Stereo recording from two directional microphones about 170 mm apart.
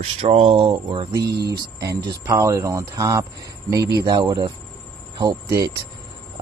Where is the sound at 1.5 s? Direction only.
20° right (ahead or behind).